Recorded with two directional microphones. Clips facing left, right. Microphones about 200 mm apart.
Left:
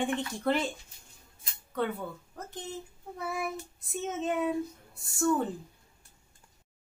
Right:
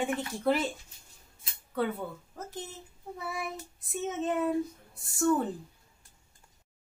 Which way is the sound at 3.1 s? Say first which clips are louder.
Left 3 dB; centre (ahead or behind).